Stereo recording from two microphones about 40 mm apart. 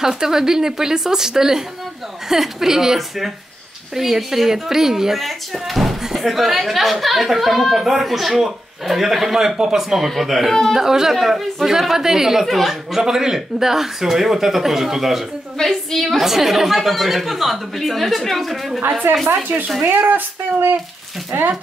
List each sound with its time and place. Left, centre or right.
0.0 s a woman's voice: centre
9.9 s a woman's voice: centre
10.7 s speech: centre
12.4 s a woman's voice: centre
12.9 s speech: centre
15.5 s a woman's voice: centre
16.3 s a woman's voice: centre
19.2 s speech: right
21.3 s speech: right